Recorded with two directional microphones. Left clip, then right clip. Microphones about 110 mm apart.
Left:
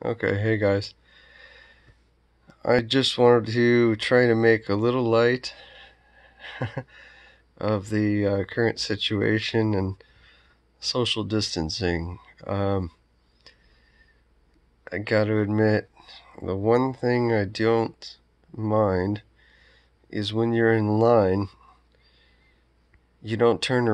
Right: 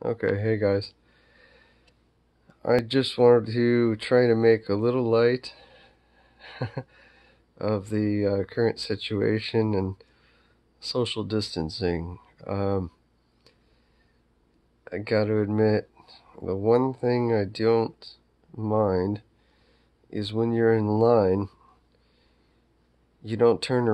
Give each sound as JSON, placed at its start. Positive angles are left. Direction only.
{"t": 0.0, "sound": "a sound", "side_deg": -25}
{"t": 2.4, "sound": "speech", "side_deg": -25}
{"t": 14.9, "sound": "speech", "side_deg": -25}
{"t": 23.2, "sound": "speech", "side_deg": -25}